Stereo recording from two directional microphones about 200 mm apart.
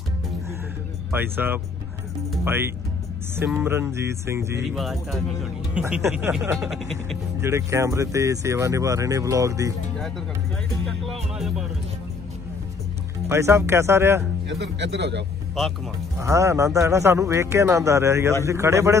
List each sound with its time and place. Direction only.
1.1 s a man's voice: 10° right (ahead or behind)
4.7 s speech: centre (ahead or behind)
6.7 s speech: centre (ahead or behind)
7.4 s a man's voice: 15° right (ahead or behind)
10.9 s music: centre (ahead or behind)
13.3 s a man's voice: 10° right (ahead or behind)
14.6 s speech: 60° right (ahead or behind)
15.5 s speech: centre (ahead or behind)
16.2 s a man's voice: 15° right (ahead or behind)